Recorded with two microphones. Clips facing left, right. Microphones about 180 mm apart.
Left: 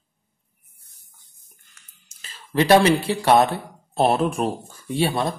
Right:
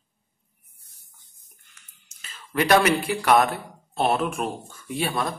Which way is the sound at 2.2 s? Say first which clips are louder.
Left 4 dB; 30° left (ahead or behind).